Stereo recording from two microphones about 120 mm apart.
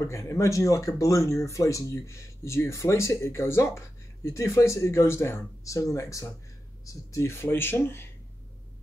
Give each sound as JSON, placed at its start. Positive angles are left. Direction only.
{"t": 0.0, "sound": "speech", "side_deg": 25}